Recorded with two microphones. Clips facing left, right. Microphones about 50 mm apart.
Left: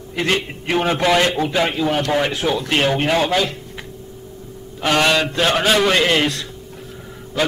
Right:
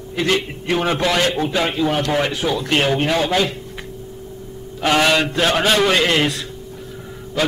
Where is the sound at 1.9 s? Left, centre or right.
Centre.